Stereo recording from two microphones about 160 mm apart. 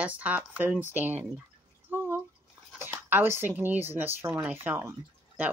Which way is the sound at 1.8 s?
15° right (ahead or behind).